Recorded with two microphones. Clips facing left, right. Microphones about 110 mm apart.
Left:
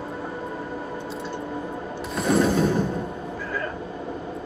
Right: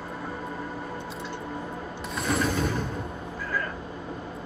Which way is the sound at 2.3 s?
30° left (ahead or behind).